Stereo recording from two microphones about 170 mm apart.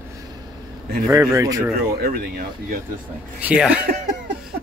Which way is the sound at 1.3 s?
20° right (ahead or behind).